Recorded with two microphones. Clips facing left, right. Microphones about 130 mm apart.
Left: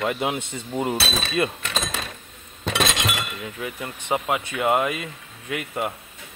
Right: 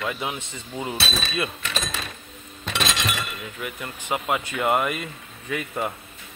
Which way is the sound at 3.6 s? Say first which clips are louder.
Left 1 dB; 25° left (ahead or behind).